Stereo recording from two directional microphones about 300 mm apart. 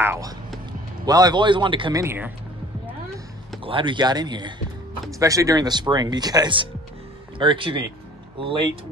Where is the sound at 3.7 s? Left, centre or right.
Centre.